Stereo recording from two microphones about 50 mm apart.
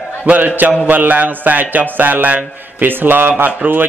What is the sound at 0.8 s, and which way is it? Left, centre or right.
A man's voice, right.